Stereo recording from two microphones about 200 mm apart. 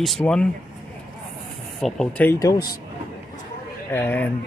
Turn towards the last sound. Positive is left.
turn(degrees=10)  # may be behind; listen again after turning